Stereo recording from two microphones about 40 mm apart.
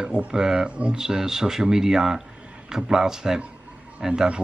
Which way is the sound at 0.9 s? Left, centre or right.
Centre.